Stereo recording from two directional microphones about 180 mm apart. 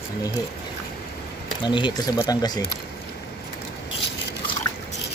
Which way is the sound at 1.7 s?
25° left (ahead or behind).